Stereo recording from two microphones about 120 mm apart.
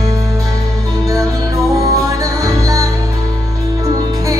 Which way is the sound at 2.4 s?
30° right (ahead or behind).